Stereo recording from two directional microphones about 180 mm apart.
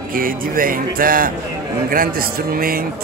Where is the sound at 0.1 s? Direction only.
50° right (ahead or behind).